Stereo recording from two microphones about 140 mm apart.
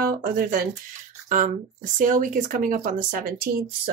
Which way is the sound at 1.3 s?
65° right (ahead or behind).